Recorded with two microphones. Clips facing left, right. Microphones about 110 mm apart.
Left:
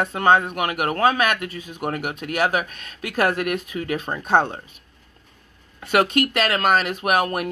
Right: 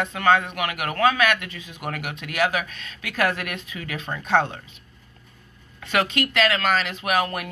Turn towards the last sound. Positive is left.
turn(degrees=45)  # may be behind; listen again after turning